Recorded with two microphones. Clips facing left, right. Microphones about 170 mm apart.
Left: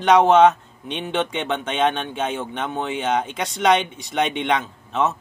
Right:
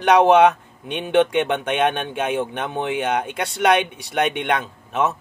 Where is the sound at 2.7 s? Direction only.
15° right (ahead or behind).